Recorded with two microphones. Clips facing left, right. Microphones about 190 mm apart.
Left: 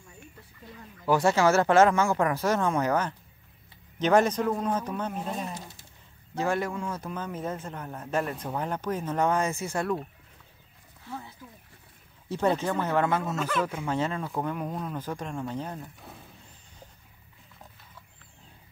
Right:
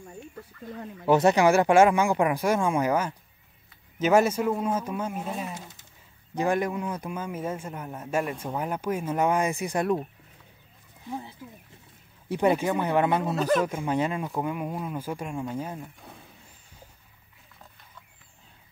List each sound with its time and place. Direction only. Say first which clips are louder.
1.0 s a man's voice: right 3 dB; 20° right (ahead or behind)
11.1 s a man's voice: right 4 dB; 15° right (ahead or behind)
12.3 s a man's voice: right 3 dB; 15° right (ahead or behind)
13.2 s a man's voice: right 5 dB; 35° right (ahead or behind)
13.7 s a man's voice: right 2 dB; 15° right (ahead or behind)
16.0 s mechanisms: even; centre (ahead or behind)